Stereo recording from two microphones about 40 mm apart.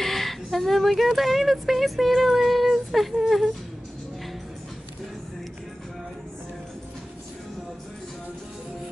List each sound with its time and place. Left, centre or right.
0.0 s speech: centre